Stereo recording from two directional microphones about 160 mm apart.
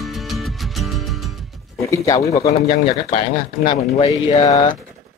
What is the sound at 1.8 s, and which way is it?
Mantra, 20° left (ahead or behind).